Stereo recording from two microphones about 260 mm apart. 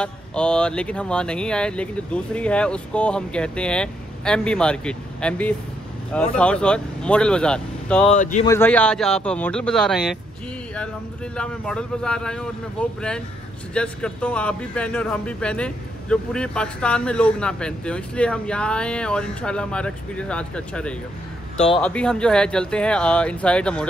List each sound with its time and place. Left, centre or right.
0.0 s speech: centre
8.1 s speech: left
8.5 s speech: centre
11.3 s speech: centre